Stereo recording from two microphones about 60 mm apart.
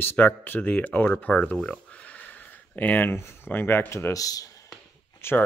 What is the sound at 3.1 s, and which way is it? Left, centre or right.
Speech, left.